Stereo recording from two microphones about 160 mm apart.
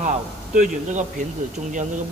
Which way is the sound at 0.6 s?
50° right (ahead or behind).